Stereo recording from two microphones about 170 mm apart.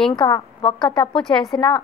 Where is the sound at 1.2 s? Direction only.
5° left (ahead or behind).